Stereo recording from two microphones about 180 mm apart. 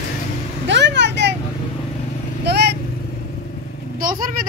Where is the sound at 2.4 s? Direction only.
65° right (ahead or behind).